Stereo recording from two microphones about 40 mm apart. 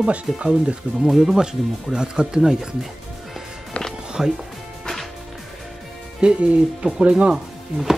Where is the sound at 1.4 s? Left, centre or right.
Centre.